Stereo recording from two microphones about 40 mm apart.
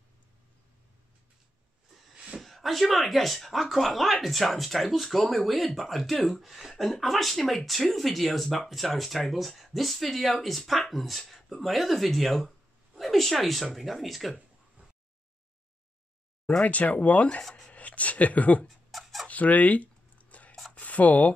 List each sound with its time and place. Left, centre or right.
2.4 s speech: centre
16.6 s speech: left
17.4 s speech: centre
17.7 s speech: left
18.7 s a sound: centre
19.2 s a sound: left